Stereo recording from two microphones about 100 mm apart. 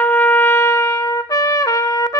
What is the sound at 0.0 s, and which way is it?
Trumpet, 15° left (ahead or behind).